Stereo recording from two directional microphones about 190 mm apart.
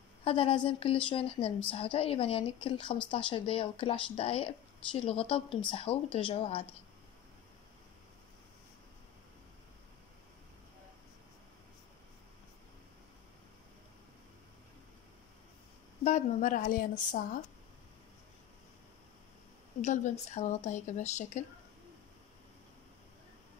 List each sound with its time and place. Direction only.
0.2 s a woman's voice: 30° left (ahead or behind)
16.0 s speech: 35° left (ahead or behind)
19.8 s speech: 40° left (ahead or behind)